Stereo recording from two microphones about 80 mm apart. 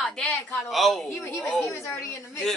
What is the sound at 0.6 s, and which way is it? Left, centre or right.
Speech, centre.